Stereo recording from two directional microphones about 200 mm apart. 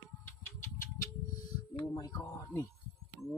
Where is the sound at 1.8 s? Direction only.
20° left (ahead or behind).